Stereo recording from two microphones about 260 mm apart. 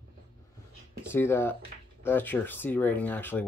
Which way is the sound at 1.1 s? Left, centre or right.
Centre.